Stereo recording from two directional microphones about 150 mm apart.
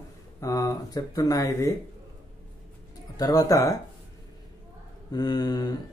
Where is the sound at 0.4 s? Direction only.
20° left (ahead or behind).